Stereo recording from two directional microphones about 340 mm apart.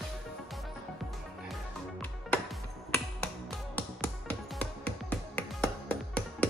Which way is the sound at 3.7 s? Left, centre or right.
Centre.